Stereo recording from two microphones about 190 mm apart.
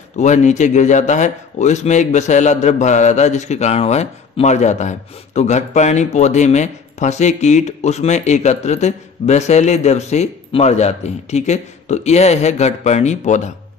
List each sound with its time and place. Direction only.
0.2 s a man's voice: 40° left (ahead or behind)